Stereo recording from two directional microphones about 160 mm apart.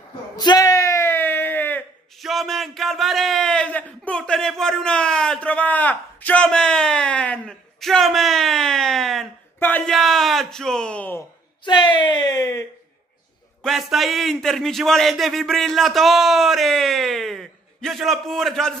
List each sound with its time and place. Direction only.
0.4 s a sound: 25° left (ahead or behind)
2.1 s speech: centre (ahead or behind)
11.6 s speech: 30° left (ahead or behind)
13.6 s a man's voice: centre (ahead or behind)